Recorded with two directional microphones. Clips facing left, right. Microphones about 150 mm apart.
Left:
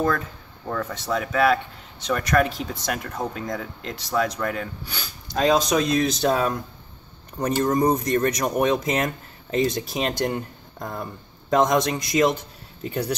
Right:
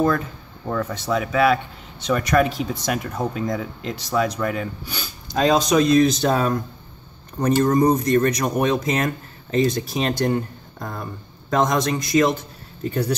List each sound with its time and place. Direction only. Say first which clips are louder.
0.7 s speech: right 3 dB; 10° right (ahead or behind); by 12.3 s 20° left (ahead or behind)